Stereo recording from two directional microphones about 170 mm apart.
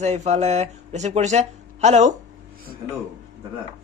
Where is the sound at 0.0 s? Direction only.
45° right (ahead or behind).